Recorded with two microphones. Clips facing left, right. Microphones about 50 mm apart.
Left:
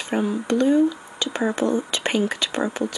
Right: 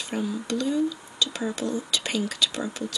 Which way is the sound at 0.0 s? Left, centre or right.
Left.